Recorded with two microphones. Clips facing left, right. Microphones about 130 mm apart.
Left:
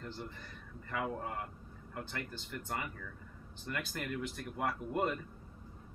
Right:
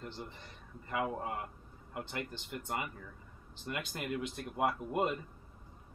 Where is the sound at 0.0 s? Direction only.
20° right (ahead or behind).